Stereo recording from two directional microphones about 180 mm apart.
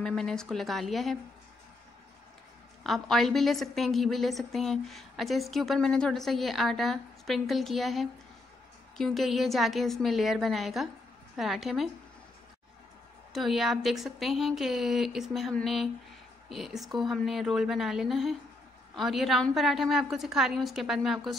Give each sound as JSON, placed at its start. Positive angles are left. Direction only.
{"t": 0.0, "sound": "a woman's voice", "side_deg": 5}
{"t": 2.8, "sound": "a woman's voice", "side_deg": 0}
{"t": 13.3, "sound": "a woman's voice", "side_deg": 0}